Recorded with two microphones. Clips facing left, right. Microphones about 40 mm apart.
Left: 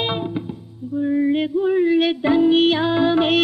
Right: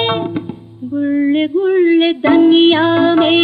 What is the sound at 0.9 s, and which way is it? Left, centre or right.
Music, right.